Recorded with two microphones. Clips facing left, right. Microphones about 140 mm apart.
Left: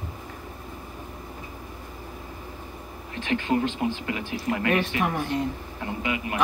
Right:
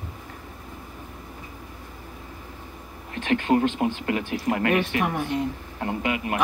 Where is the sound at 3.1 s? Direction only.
50° right (ahead or behind).